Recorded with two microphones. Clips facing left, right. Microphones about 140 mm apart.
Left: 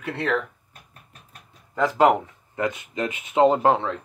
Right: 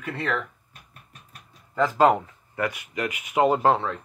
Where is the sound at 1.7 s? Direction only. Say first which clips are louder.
Left 1 dB; 15° left (ahead or behind).